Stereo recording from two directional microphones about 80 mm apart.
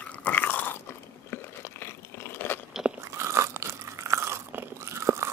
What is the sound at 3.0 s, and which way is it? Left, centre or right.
Crunch, right.